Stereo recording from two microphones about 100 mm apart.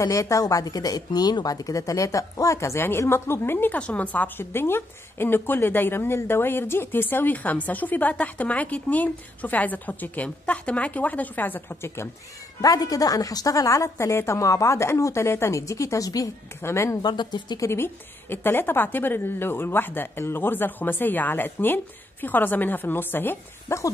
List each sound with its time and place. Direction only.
0.0 s speech: 35° left (ahead or behind)
12.6 s a woman's voice: 35° left (ahead or behind)
17.0 s speech: 50° left (ahead or behind)
17.6 s speech: 25° left (ahead or behind)